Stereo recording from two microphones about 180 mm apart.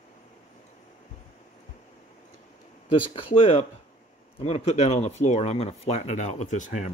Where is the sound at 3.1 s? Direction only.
30° left (ahead or behind).